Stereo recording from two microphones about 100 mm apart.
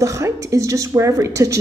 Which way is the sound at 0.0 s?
35° right (ahead or behind).